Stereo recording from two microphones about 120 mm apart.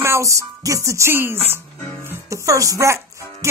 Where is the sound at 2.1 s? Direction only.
25° right (ahead or behind).